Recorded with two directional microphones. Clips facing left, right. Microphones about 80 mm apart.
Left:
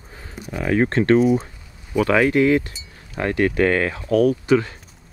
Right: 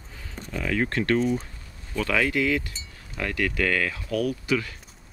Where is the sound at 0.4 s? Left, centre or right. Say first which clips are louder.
Left 4 dB; left.